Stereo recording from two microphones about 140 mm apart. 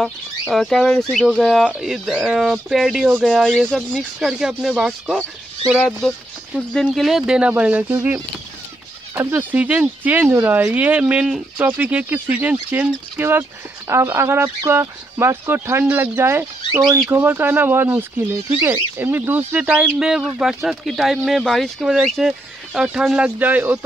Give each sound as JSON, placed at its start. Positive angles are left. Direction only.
{"t": 0.0, "sound": "speech", "side_deg": 0}
{"t": 9.1, "sound": "speech", "side_deg": -15}